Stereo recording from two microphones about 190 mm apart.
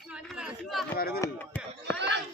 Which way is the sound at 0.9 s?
55° left (ahead or behind).